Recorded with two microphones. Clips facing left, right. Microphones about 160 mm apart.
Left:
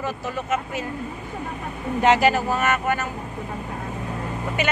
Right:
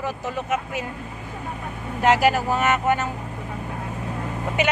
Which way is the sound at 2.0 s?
10° right (ahead or behind).